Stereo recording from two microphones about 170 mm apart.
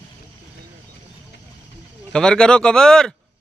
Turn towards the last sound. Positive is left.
turn(degrees=5)  # may be behind; listen again after turning